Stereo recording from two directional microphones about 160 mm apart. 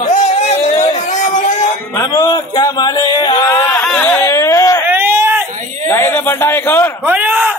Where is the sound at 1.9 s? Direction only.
20° left (ahead or behind).